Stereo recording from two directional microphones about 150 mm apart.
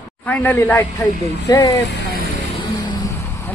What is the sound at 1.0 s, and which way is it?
Speech, 25° left (ahead or behind).